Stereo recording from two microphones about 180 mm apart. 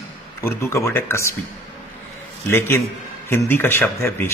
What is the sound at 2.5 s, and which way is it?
A man's voice, 15° left (ahead or behind).